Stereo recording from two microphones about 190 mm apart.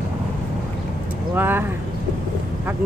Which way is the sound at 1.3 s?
10° right (ahead or behind).